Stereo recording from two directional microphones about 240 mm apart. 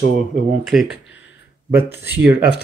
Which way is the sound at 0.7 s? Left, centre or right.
Centre.